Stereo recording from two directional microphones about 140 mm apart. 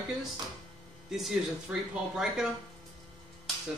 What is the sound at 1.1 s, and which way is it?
A man's voice, 5° right (ahead or behind).